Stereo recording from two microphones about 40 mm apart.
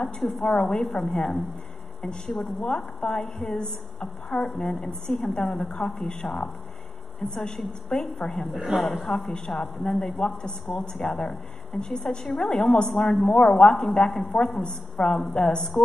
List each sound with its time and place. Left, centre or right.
0.4 s a woman's voice: centre
2.0 s a woman's voice: left
3.5 s a woman's voice: left
6.0 s a woman's voice: left
10.8 s a woman's voice: centre
13.1 s a woman's voice: centre
14.1 s a woman's voice: centre